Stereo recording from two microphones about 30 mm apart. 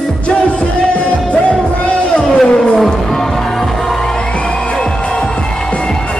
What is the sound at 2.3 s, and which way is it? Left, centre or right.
Music, left.